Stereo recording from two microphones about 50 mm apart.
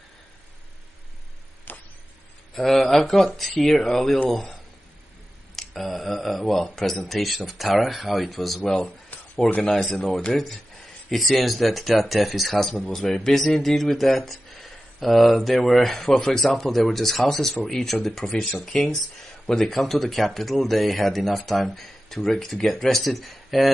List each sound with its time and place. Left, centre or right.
1.7 s a sound: left
2.5 s speech: centre
5.6 s speech: centre